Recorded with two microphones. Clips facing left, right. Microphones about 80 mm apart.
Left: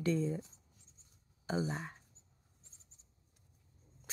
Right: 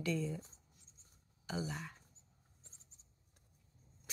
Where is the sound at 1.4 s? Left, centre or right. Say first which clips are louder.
Left 5 dB; left.